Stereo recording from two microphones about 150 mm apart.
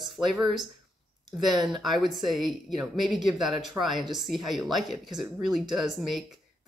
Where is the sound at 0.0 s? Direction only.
Centre (ahead or behind).